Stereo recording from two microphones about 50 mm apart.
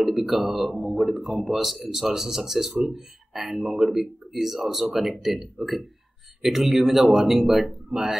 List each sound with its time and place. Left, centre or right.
0.0 s speech: centre